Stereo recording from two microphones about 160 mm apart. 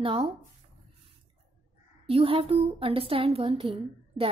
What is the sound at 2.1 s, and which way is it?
A woman's voice, 35° right (ahead or behind).